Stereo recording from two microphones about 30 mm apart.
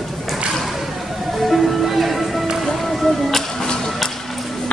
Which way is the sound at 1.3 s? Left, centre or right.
Centre.